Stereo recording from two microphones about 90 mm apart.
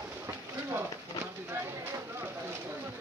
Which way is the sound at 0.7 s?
30° right (ahead or behind).